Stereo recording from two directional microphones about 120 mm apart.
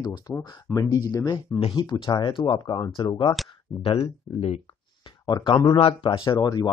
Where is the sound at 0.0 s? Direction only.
35° left (ahead or behind).